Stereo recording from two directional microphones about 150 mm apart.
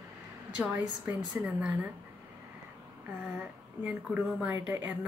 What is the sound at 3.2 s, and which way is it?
Speech, 5° right (ahead or behind).